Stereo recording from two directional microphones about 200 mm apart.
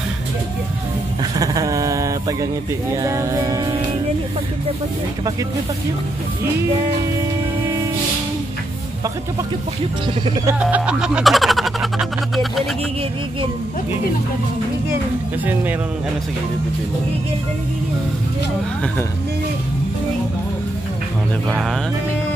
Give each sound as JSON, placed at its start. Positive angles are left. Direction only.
{"t": 1.3, "sound": "a sound", "side_deg": -20}
{"t": 3.0, "sound": "music", "side_deg": -15}
{"t": 10.6, "sound": "speech", "side_deg": -5}
{"t": 21.5, "sound": "speech", "side_deg": 0}